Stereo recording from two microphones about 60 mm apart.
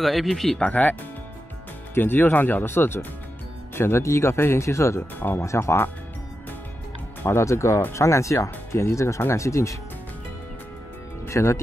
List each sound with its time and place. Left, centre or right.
0.0 s speech: centre
0.6 s speech: left
2.0 s speech: left
7.2 s speech: left
11.2 s speech: left